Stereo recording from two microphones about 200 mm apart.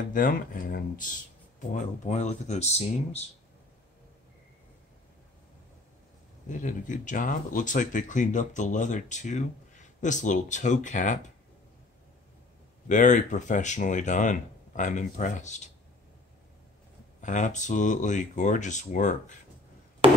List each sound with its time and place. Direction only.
0.1 s speech: 45° left (ahead or behind)
6.5 s speech: 40° left (ahead or behind)
12.8 s speech: 40° left (ahead or behind)
17.2 s speech: 40° left (ahead or behind)